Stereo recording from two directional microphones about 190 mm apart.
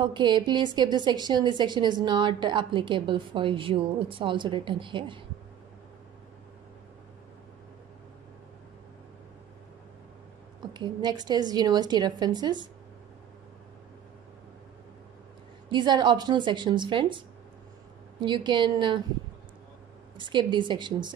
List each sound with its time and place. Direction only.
0.0 s a woman's voice: 25° right (ahead or behind)
10.6 s a woman's voice: 25° right (ahead or behind)
15.7 s a woman's voice: 25° right (ahead or behind)
18.2 s a woman's voice: 25° right (ahead or behind)
20.2 s a woman's voice: 25° right (ahead or behind)